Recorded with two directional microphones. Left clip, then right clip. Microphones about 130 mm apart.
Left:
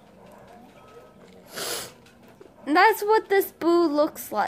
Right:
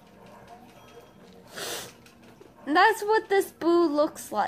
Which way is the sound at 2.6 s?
15° left (ahead or behind).